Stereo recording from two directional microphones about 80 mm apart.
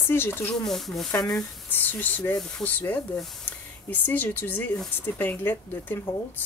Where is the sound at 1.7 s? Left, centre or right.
Left.